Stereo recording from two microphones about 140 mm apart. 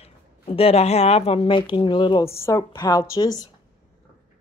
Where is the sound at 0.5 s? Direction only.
45° left (ahead or behind).